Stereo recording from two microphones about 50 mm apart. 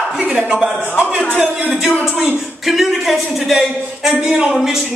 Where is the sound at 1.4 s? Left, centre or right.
Right.